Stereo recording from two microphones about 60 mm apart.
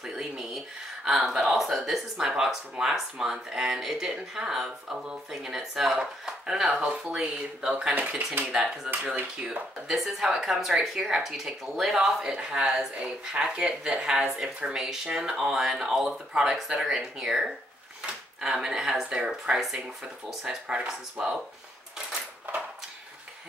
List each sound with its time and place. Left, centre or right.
0.0 s speech: centre
9.0 s speech: right
9.8 s a woman's voice: centre